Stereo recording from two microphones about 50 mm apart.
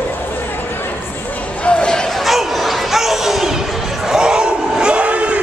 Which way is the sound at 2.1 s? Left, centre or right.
Centre.